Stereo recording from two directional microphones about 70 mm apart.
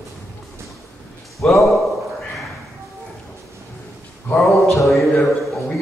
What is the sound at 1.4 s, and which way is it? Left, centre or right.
Speech, centre.